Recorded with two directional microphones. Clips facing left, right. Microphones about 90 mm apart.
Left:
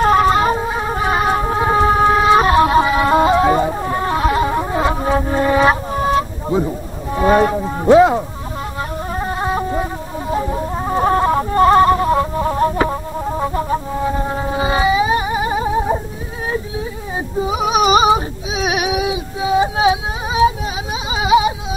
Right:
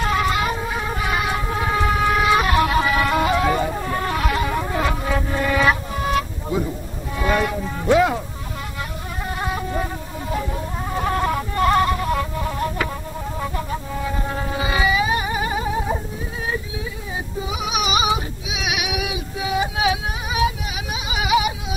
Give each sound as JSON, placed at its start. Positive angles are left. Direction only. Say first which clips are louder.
{"t": 0.0, "sound": "music", "louder": "left 8 dB", "side_deg": 40}
{"t": 9.2, "sound": "chicken", "louder": "left 5 dB", "side_deg": 30}
{"t": 10.3, "sound": "music", "louder": "left 6 dB", "side_deg": 30}
{"t": 17.4, "sound": "a sound", "louder": "left 9 dB", "side_deg": 40}